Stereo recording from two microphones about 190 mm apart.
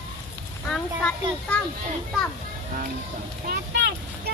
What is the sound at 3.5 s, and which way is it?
Vehicle, 55° right (ahead or behind).